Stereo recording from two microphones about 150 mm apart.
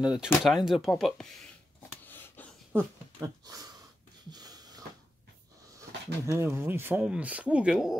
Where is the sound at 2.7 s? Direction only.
20° right (ahead or behind).